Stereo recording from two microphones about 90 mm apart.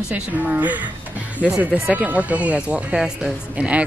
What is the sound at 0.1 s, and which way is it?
Speech, 20° right (ahead or behind).